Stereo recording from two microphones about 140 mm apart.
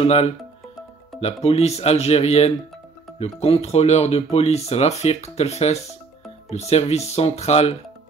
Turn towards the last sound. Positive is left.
turn(degrees=50)  # may be behind; listen again after turning